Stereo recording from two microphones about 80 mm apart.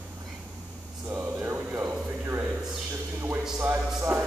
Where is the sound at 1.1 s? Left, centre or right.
Right.